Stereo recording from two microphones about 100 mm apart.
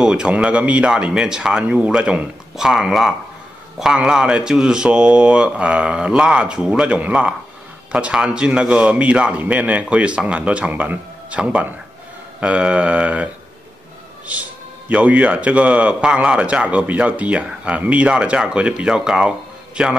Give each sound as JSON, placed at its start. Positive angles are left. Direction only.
{"t": 0.0, "sound": "a man's voice", "side_deg": -10}
{"t": 14.3, "sound": "a man's voice", "side_deg": -15}